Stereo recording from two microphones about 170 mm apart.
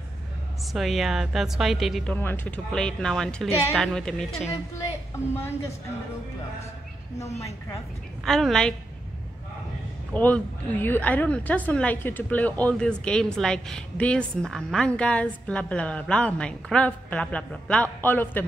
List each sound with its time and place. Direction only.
0.7 s speech: centre (ahead or behind)
2.1 s speech: 10° left (ahead or behind)
5.1 s a woman's voice: 15° left (ahead or behind)
7.2 s a woman's voice: 20° left (ahead or behind)
8.2 s speech: centre (ahead or behind)
10.1 s a woman's voice: 10° left (ahead or behind)